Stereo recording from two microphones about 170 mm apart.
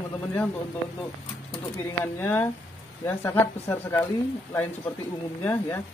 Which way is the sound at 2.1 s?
10° left (ahead or behind).